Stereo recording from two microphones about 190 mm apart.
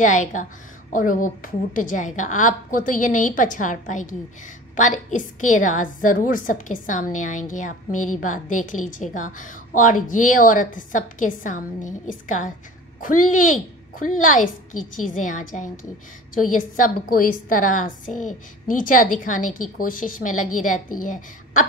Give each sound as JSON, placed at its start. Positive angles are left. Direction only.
{"t": 0.0, "sound": "a woman's voice", "side_deg": 40}